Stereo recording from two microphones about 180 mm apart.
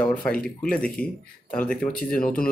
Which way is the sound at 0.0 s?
5° left (ahead or behind).